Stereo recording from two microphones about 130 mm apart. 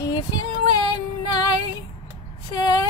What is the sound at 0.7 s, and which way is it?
Female singing, 30° left (ahead or behind).